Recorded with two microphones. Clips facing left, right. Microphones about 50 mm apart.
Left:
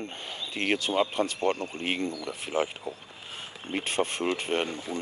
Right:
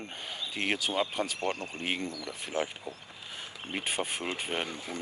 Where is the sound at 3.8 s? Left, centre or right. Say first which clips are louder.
Left 6 dB; centre.